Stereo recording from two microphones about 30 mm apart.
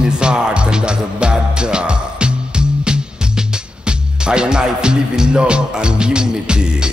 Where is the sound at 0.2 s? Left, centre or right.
Right.